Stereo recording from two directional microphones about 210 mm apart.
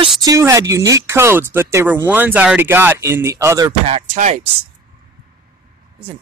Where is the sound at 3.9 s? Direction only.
30° right (ahead or behind).